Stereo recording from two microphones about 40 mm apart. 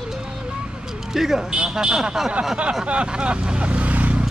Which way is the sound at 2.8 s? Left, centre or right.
Right.